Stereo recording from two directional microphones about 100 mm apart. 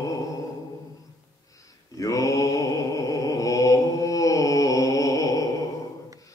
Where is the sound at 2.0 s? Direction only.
35° left (ahead or behind).